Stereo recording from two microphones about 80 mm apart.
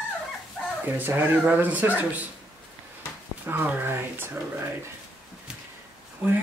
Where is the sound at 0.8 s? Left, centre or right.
Right.